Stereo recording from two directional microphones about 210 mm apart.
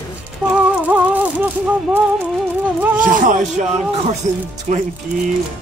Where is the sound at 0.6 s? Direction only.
5° right (ahead or behind).